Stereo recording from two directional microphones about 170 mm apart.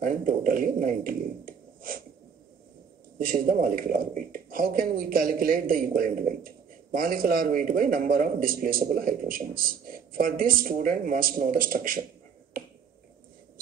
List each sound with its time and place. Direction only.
0.0 s speech: 55° right (ahead or behind)
3.2 s speech: 55° right (ahead or behind)